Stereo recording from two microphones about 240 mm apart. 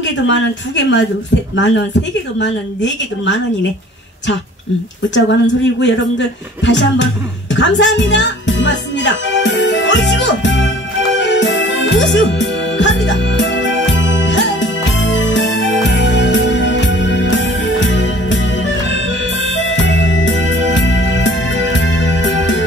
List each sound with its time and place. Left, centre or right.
0.0 s speech: left
5.1 s speech: left
7.5 s music: left